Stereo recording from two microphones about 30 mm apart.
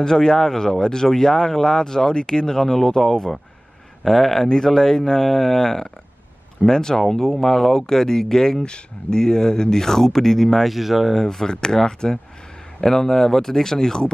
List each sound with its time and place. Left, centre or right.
0.0 s speech: left
8.6 s speech: left; by 11.1 s centre
11.1 s speech: centre